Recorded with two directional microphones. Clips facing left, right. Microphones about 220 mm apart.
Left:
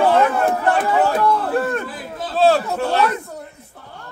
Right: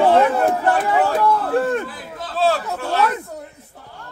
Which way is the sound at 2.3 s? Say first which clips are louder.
Left 4 dB; 25° left (ahead or behind).